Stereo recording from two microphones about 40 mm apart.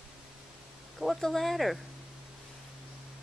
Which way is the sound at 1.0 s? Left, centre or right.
Centre.